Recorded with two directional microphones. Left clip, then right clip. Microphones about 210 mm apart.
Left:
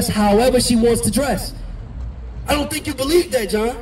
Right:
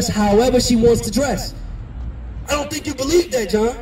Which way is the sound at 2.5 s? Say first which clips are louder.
Left 1 dB; 10° right (ahead or behind).